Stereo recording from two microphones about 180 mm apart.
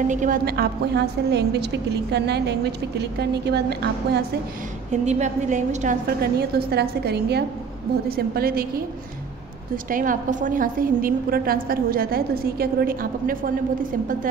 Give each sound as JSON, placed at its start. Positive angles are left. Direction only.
{"t": 0.1, "sound": "a woman's voice", "side_deg": -45}
{"t": 0.5, "sound": "a woman's voice", "side_deg": -65}
{"t": 5.0, "sound": "a woman's voice", "side_deg": -40}
{"t": 6.5, "sound": "a woman's voice", "side_deg": -60}
{"t": 9.8, "sound": "a woman's voice", "side_deg": -50}